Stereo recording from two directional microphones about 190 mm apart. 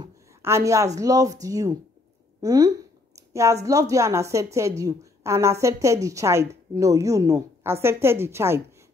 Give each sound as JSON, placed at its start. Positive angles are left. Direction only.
{"t": 0.0, "sound": "speech", "side_deg": -15}
{"t": 3.2, "sound": "a sound", "side_deg": -15}
{"t": 3.6, "sound": "a woman's voice", "side_deg": -15}